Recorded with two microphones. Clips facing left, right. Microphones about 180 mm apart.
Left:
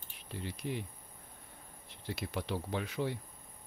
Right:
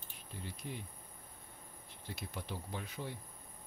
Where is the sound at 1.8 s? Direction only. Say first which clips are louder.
Left 7 dB; 85° left.